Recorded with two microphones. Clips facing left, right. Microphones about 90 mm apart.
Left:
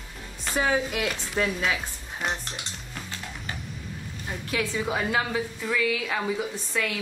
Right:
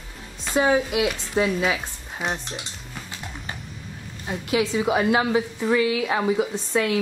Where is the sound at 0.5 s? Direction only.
20° right (ahead or behind).